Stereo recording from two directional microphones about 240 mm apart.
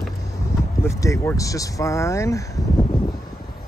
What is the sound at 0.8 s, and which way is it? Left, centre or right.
Speech, centre.